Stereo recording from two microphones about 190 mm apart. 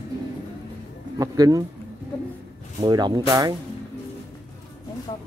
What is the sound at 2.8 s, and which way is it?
Speech, 20° right (ahead or behind).